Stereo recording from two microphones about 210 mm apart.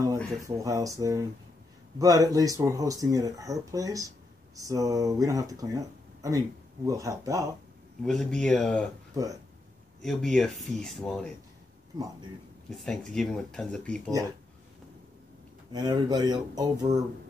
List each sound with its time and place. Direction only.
0.7 s speech: 15° right (ahead or behind)
8.0 s speech: centre (ahead or behind)
9.1 s speech: 15° right (ahead or behind)
10.0 s speech: 5° left (ahead or behind)
12.6 s speech: centre (ahead or behind)
15.7 s speech: 20° right (ahead or behind)